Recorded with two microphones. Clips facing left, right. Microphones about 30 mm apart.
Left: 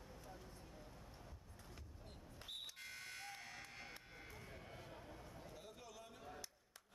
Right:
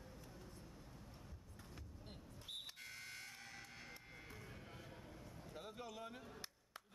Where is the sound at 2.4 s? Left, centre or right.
Centre.